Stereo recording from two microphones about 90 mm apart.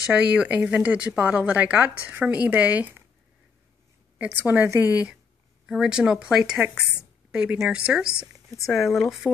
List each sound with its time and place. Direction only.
0.1 s a woman's voice: 10° right (ahead or behind)
4.4 s a woman's voice: 20° right (ahead or behind)
5.7 s a woman's voice: 5° right (ahead or behind)